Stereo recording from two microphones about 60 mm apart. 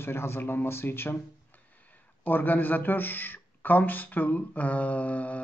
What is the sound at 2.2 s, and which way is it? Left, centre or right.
Speech, left.